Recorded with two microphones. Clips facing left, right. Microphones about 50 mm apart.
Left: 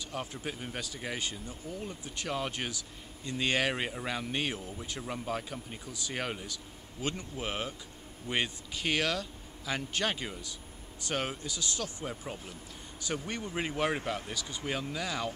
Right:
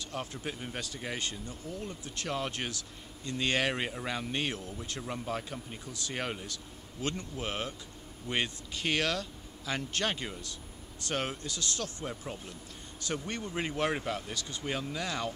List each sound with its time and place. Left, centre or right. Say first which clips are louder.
0.1 s speech: even; centre
7.0 s speech: even; centre